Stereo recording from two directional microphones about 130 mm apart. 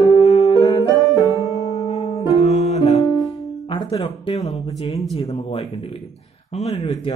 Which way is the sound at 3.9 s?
50° left (ahead or behind).